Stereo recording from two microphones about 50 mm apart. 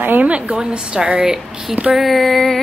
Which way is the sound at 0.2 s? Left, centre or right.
Right.